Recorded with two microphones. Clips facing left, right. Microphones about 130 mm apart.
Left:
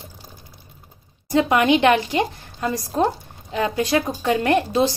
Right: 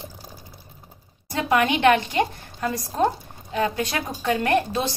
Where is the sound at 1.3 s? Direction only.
25° left (ahead or behind).